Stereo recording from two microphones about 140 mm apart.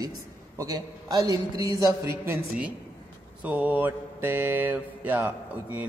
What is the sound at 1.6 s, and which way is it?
Mantra, 25° right (ahead or behind).